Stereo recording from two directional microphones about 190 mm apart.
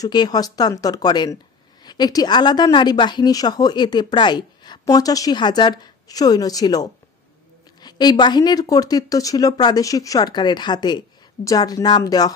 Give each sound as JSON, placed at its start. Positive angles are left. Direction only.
{"t": 0.0, "sound": "a woman's voice", "side_deg": 20}